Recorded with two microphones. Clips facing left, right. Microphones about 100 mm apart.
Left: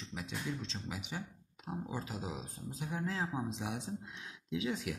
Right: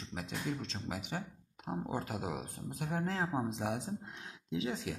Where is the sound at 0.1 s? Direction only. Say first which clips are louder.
Right 2 dB; 50° right (ahead or behind).